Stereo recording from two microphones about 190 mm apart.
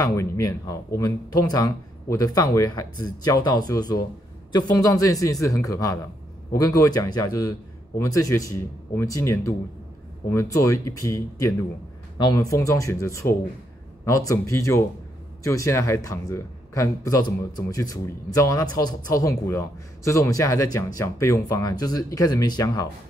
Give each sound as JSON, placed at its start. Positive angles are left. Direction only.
{"t": 0.0, "sound": "a man's voice", "side_deg": 15}